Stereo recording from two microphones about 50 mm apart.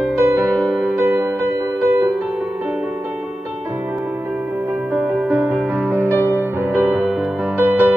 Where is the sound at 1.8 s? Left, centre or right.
Right.